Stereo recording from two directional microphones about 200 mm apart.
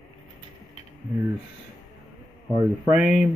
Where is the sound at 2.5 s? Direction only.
15° right (ahead or behind).